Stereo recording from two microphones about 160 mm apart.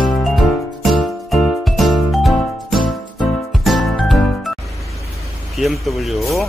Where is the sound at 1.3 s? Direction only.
Centre (ahead or behind).